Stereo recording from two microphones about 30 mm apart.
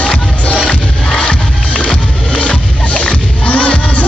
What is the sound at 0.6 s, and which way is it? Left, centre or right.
Music, left.